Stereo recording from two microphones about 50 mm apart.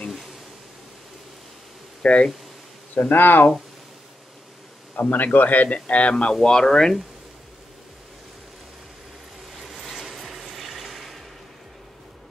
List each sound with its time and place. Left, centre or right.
2.0 s speech: centre
2.9 s a man's voice: left
4.9 s a man's voice: left
6.3 s speech: centre
9.7 s a sound: centre